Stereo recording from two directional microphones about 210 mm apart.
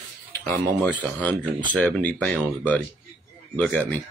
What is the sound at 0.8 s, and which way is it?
Speech, 5° left (ahead or behind).